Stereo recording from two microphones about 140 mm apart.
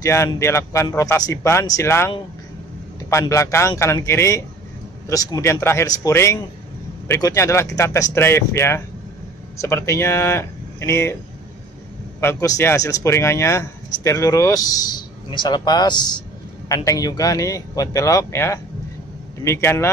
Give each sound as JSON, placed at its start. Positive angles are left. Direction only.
{"t": 0.0, "sound": "speech", "side_deg": 20}
{"t": 12.2, "sound": "speech", "side_deg": 20}